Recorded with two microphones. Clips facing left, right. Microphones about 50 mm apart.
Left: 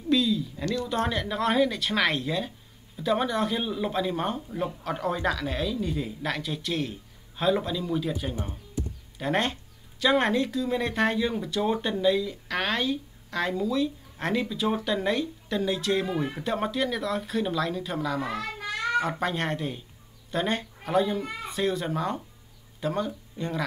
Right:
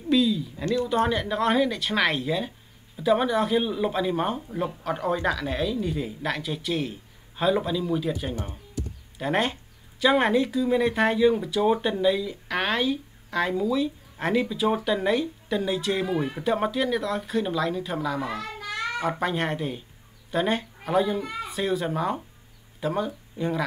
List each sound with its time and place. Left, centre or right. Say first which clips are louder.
0.1 s speech: right 2 dB; centre
8.4 s a sound: even; centre
9.2 s speech: right 2 dB; centre